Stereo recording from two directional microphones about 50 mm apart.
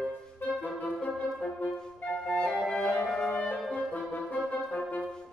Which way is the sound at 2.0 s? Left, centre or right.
Centre.